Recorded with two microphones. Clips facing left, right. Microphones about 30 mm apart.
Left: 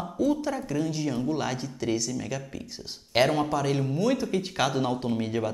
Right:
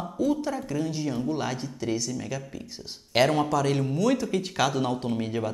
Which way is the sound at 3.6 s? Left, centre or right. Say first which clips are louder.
Right 1 dB; centre.